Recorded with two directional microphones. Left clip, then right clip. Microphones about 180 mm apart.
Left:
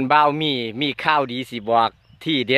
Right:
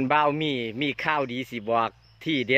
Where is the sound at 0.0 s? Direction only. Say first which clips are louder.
Left 6 dB; 20° left (ahead or behind).